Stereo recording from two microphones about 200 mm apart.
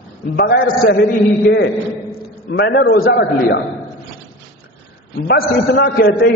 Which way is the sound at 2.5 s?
55° left (ahead or behind).